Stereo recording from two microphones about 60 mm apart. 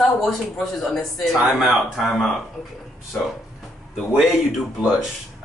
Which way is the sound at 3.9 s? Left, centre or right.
Centre.